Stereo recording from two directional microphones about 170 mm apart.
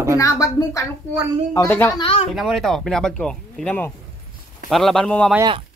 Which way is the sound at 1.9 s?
30° left (ahead or behind).